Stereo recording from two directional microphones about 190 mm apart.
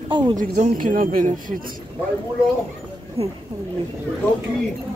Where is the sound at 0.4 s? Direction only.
45° right (ahead or behind).